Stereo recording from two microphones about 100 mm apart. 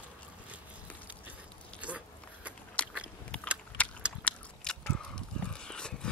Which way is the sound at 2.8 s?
10° left (ahead or behind).